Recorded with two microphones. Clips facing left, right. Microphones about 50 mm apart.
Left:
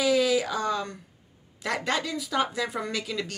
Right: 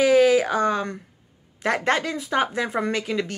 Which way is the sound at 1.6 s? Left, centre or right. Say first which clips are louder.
Right 6 dB; right.